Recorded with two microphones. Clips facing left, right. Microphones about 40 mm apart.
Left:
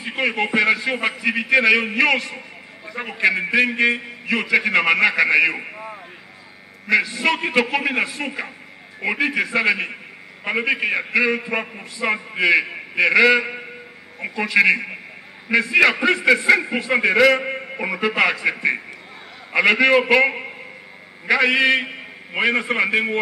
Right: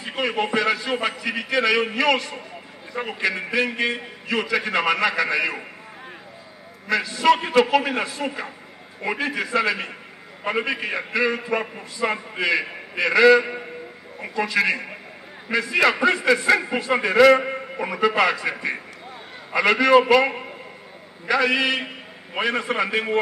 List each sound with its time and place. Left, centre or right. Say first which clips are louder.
0.0 s a man's voice: left 2 dB; centre
3.2 s a man's voice: left 6 dB; left
6.9 s a man's voice: even; centre
16.3 s a man's voice: left 3 dB; centre
17.5 s a man's voice: left 2 dB; centre
19.9 s a man's voice: even; centre